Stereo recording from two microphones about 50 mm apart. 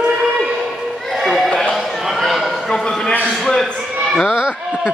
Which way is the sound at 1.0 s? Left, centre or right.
Centre.